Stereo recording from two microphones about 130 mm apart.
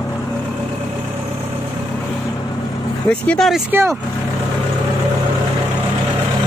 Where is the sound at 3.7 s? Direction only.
20° right (ahead or behind).